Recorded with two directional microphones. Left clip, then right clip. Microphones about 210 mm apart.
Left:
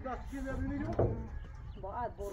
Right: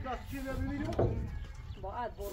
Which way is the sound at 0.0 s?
15° right (ahead or behind).